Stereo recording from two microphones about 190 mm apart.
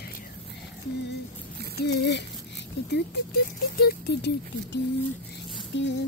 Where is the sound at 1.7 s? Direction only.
65° left (ahead or behind).